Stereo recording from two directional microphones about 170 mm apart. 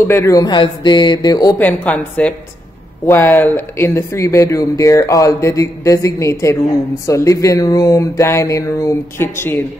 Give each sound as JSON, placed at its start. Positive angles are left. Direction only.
{"t": 0.0, "sound": "speech", "side_deg": 15}
{"t": 1.6, "sound": "speech", "side_deg": 10}